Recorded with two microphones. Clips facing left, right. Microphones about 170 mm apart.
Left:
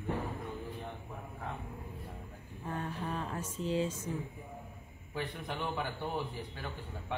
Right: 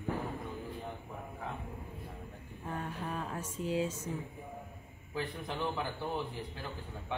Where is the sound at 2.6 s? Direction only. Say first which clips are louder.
Left 1 dB; centre (ahead or behind).